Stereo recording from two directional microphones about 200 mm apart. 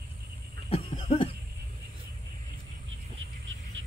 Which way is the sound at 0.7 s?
30° left (ahead or behind).